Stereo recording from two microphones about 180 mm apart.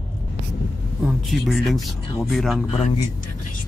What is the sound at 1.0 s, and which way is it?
Speech, centre (ahead or behind).